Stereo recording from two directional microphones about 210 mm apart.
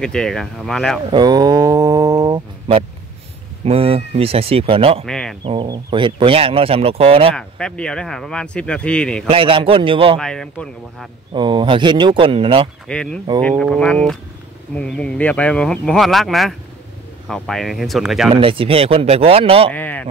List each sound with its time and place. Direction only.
0.0 s speech: 5° left (ahead or behind)
1.1 s a sound: 20° right (ahead or behind)
3.6 s speech: 30° right (ahead or behind)
5.0 s speech: 5° left (ahead or behind)
5.4 s speech: 25° right (ahead or behind)
7.3 s speech: 5° left (ahead or behind)
9.3 s speech: 25° right (ahead or behind)
10.1 s speech: 5° left (ahead or behind)
11.3 s speech: 20° right (ahead or behind)
12.8 s speech: 5° left (ahead or behind)
18.3 s speech: 25° right (ahead or behind)
19.7 s a sound: 10° left (ahead or behind)